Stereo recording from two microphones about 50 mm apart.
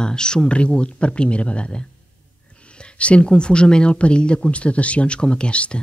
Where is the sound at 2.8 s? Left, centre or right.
Left.